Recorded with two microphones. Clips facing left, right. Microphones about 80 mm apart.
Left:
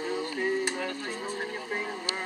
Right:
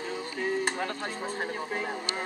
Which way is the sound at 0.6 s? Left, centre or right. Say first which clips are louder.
Right 1 dB; right.